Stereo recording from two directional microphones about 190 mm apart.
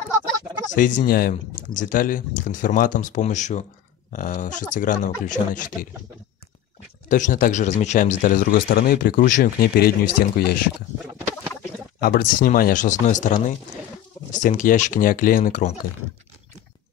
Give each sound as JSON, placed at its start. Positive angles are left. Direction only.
{"t": 0.7, "sound": "speech", "side_deg": 45}
{"t": 7.1, "sound": "speech", "side_deg": 40}
{"t": 12.0, "sound": "speech", "side_deg": 50}